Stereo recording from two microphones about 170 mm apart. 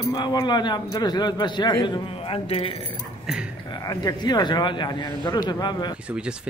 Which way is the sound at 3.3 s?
5° right (ahead or behind).